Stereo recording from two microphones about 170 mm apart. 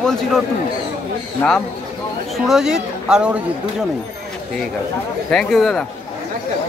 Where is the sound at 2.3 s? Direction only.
Centre (ahead or behind).